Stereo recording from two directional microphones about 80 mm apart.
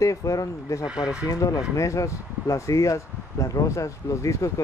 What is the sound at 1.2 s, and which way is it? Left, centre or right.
Speech, left.